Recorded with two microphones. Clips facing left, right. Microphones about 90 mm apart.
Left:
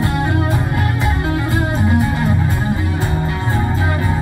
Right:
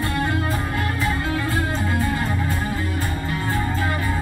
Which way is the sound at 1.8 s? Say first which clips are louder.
Left 7 dB; 20° left (ahead or behind).